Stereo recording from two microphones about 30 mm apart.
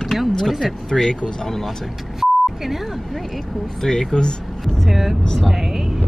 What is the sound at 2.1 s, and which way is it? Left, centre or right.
Speech, centre.